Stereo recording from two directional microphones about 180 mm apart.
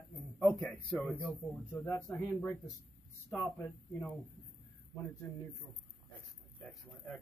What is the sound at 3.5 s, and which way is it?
Speech, 15° left (ahead or behind).